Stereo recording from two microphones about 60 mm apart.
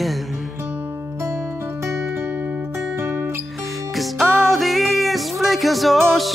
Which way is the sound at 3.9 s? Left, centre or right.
Centre.